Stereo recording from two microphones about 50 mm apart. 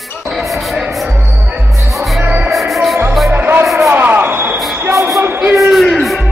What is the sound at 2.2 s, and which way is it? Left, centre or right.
Music, right.